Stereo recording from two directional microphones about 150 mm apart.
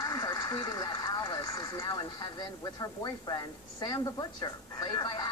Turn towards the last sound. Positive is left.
turn(degrees=25)  # may be behind; listen again after turning